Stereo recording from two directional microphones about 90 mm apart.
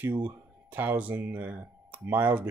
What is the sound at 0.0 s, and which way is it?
Speech, 20° right (ahead or behind).